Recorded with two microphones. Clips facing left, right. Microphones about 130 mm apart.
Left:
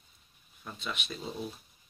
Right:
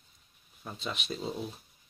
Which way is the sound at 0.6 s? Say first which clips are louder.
Right 1 dB; 35° right (ahead or behind).